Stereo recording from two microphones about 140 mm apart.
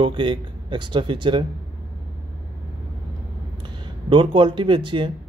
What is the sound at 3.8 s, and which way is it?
Speech, 35° right (ahead or behind).